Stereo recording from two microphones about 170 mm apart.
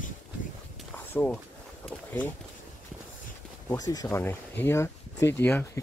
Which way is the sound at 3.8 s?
20° left (ahead or behind).